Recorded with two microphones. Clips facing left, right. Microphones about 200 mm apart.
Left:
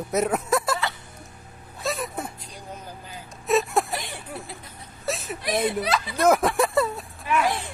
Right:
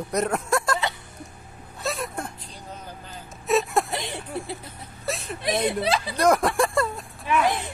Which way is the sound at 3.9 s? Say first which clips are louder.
Right 3 dB; 20° right (ahead or behind).